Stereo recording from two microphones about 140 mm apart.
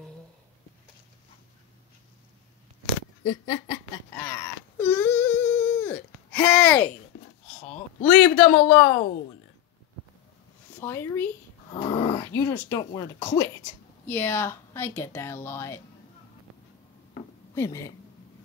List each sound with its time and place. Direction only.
3.3 s wail: 25° left (ahead or behind)
8.0 s speech: 5° left (ahead or behind)
10.8 s speech: 20° left (ahead or behind)
17.6 s speech: 20° left (ahead or behind)